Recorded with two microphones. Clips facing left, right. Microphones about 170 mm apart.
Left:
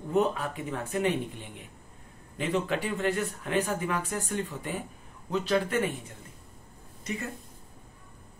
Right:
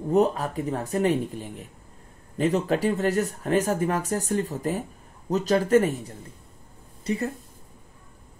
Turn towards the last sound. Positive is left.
turn(degrees=-35)  # may be behind; listen again after turning